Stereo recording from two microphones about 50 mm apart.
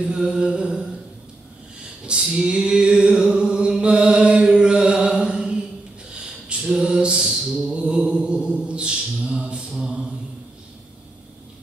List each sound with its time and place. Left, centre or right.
0.0 s music: centre
2.0 s a sound: centre
3.8 s chant: right
5.2 s mantra: centre
6.1 s a capella: centre
9.2 s music: centre
9.8 s mantra: centre